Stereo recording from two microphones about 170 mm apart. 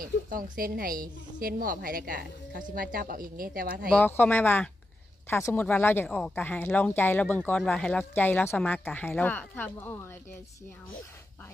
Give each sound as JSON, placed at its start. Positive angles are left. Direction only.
{"t": 0.0, "sound": "a woman's voice", "side_deg": -55}
{"t": 3.9, "sound": "speech", "side_deg": 10}